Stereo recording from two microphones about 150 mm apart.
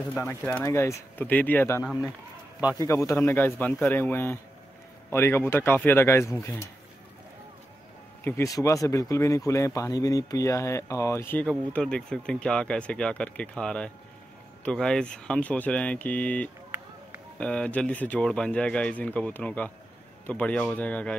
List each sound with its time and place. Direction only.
0.1 s speech: 10° left (ahead or behind)
8.2 s speech: 15° left (ahead or behind)